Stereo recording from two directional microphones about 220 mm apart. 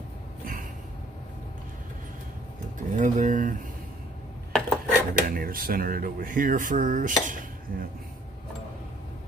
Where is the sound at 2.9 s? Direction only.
35° right (ahead or behind).